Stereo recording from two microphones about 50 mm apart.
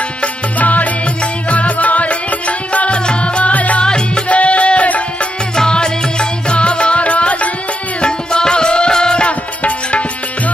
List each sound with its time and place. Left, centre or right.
0.2 s music: left
3.8 s music: centre
5.6 s music: centre